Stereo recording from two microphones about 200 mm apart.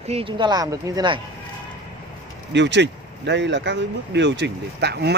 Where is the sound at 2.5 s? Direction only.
60° right (ahead or behind).